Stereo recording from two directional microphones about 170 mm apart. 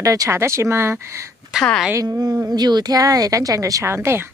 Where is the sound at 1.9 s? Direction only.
20° right (ahead or behind).